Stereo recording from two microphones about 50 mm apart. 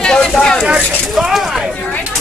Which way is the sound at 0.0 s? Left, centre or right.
Centre.